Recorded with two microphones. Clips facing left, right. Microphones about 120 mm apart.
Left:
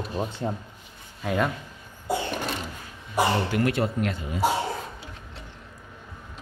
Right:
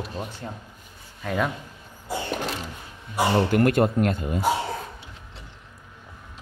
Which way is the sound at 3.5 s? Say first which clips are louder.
Right 5 dB; 50° right (ahead or behind).